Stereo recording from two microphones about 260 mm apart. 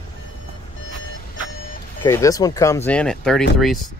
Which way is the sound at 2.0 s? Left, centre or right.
Centre.